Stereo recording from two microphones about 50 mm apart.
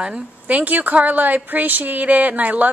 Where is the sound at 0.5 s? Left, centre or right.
Right.